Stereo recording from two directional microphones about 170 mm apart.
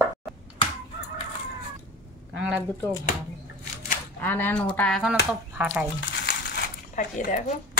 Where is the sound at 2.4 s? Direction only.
5° right (ahead or behind).